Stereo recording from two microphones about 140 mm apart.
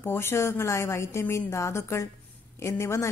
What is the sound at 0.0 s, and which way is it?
A woman's voice, 15° left (ahead or behind).